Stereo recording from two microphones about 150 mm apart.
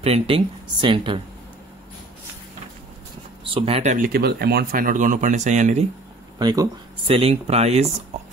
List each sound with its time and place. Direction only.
0.0 s speech: 40° right (ahead or behind)
3.5 s speech: 40° right (ahead or behind)
3.9 s speech: 80° right; by 5.9 s 50° right (ahead or behind)
6.3 s speech: 25° right (ahead or behind)
7.1 s speech: 40° right (ahead or behind)